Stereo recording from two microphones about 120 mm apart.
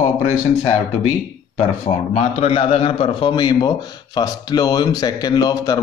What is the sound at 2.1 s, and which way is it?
A man's voice, 55° left (ahead or behind).